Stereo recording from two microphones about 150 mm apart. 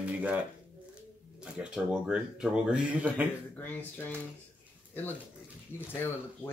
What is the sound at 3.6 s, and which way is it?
Speech, 10° left (ahead or behind).